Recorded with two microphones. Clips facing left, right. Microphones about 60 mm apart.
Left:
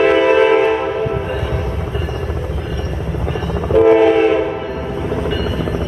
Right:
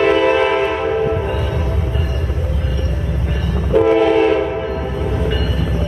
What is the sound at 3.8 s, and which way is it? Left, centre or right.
Train, centre.